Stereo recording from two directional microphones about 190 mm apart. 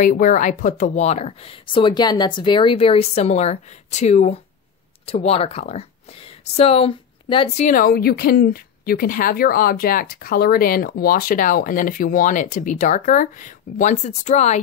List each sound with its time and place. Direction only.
0.0 s speech: 45° left (ahead or behind); by 7.6 s 30° left (ahead or behind)
7.6 s a woman's voice: 45° left (ahead or behind)